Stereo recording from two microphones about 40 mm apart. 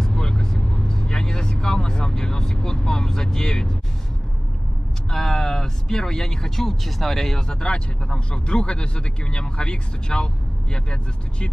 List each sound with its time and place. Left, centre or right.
0.0 s vehicle: centre
5.1 s speech: centre
7.4 s speech: left